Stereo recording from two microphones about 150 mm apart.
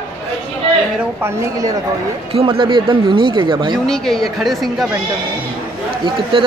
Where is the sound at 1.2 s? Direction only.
20° right (ahead or behind).